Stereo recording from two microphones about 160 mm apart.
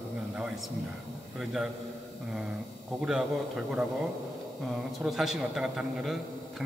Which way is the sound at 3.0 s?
5° right (ahead or behind).